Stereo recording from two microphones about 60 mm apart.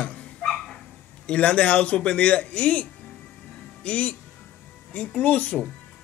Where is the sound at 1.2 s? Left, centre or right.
Left.